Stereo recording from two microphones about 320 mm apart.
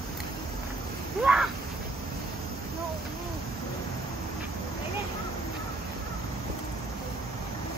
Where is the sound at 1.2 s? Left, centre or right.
Centre.